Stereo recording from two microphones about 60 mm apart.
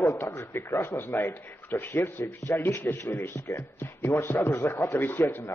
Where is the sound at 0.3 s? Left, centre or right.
Left.